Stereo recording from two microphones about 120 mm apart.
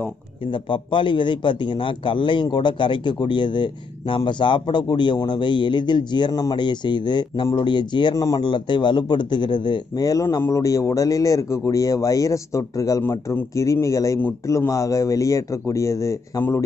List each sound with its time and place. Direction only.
0.5 s a man's voice: 45° left (ahead or behind); by 16.6 s 25° left (ahead or behind)